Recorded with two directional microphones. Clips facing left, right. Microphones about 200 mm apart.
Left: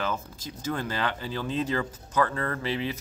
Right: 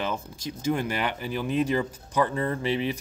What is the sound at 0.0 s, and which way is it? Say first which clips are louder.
Speech: right 1 dB; 15° right (ahead or behind).